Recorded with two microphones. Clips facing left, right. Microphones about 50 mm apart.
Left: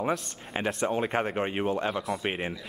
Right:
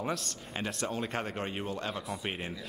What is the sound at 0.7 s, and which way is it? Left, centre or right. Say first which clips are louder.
Speech: left 8 dB; left.